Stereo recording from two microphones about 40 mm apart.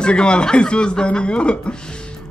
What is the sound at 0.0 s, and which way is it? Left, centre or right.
A man's voice, left.